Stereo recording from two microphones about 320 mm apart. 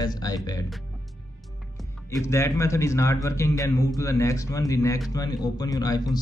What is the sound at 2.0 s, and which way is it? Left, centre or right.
Speech, centre.